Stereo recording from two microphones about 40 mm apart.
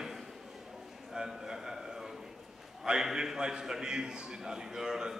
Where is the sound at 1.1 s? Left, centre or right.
Centre.